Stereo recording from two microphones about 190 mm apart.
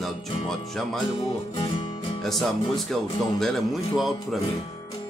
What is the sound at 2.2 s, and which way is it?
Music, centre (ahead or behind).